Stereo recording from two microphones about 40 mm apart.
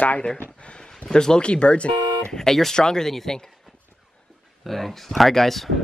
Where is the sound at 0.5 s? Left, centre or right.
Left.